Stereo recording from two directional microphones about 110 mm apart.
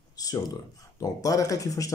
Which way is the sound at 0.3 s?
35° left (ahead or behind).